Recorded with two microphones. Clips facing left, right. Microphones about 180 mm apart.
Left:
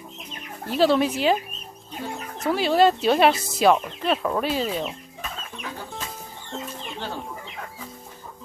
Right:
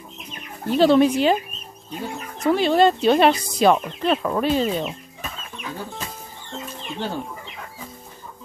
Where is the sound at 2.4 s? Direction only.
5° left (ahead or behind).